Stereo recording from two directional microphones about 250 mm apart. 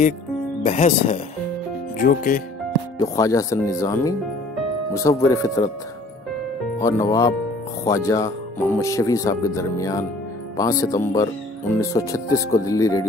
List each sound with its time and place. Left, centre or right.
0.7 s speech: left
3.0 s speech: centre
6.8 s speech: centre